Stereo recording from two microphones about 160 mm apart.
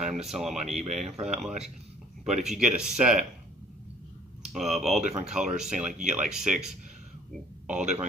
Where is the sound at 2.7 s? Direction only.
5° right (ahead or behind).